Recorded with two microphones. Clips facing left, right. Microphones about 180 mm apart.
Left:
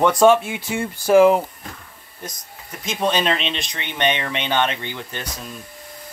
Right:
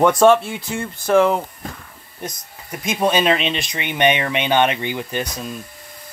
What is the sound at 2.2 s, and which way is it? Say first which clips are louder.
Speech: right 4 dB; 20° right (ahead or behind).